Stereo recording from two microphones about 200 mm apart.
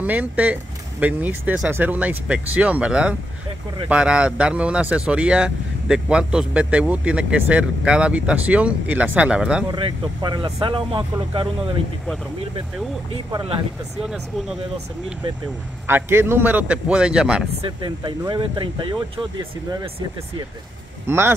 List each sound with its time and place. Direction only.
0.0 s speech: 10° right (ahead or behind)
9.7 s speech: 25° right (ahead or behind)
13.1 s speech: 30° right (ahead or behind)
15.9 s speech: 10° right (ahead or behind)
17.6 s speech: 25° right (ahead or behind)
21.1 s speech: 10° right (ahead or behind)